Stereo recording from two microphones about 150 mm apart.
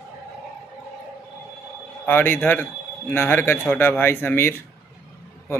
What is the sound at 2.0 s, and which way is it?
Speech, 15° left (ahead or behind).